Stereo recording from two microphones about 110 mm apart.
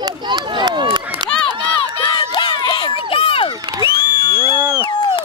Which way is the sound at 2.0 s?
45° left (ahead or behind).